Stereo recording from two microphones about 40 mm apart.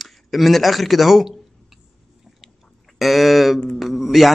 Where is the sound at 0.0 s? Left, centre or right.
Centre.